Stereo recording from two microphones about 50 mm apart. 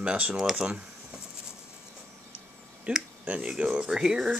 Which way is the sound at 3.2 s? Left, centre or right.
Right.